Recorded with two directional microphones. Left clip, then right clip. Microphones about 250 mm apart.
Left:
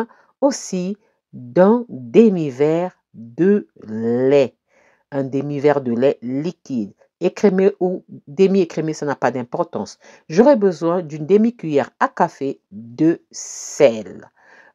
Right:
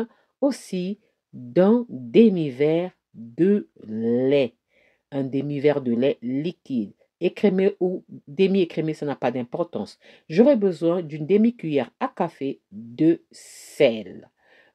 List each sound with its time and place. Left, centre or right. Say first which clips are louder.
0.0 s a woman's voice: left 6 dB; centre
13.3 s speech: left 14 dB; centre
13.8 s speech: left 7 dB; centre